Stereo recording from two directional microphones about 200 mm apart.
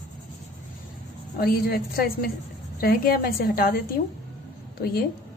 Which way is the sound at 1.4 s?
50° left (ahead or behind).